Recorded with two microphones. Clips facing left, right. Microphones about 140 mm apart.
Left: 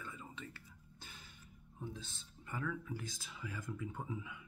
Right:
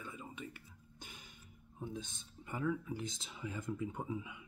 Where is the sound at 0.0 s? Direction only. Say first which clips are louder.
Right 2 dB; 15° right (ahead or behind).